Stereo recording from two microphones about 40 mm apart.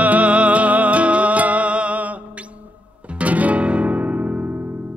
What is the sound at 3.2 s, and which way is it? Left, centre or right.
Music, right.